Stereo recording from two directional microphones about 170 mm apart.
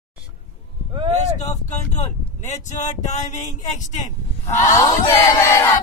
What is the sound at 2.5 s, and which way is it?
Speech, 45° left (ahead or behind).